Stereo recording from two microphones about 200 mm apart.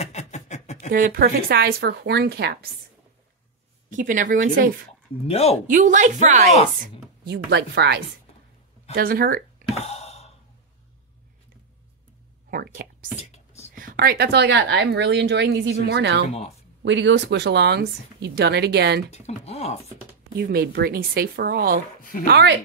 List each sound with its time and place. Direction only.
0.0 s a sound: 35° left (ahead or behind)
0.9 s speech: 45° right (ahead or behind)
3.9 s speech: 40° right (ahead or behind)
5.2 s speech: 30° left (ahead or behind)
5.7 s speech: 40° right (ahead or behind)
6.8 s speech: 55° right (ahead or behind)
9.8 s sigh: 30° left (ahead or behind)
12.4 s a sound: 45° right (ahead or behind)
13.2 s a sound: 35° left (ahead or behind)
13.7 s speech: 45° right (ahead or behind)
16.3 s speech: 30° left (ahead or behind)
16.8 s speech: 65° right (ahead or behind)
19.0 s speech: 35° left (ahead or behind)
20.3 s speech: 50° right (ahead or behind)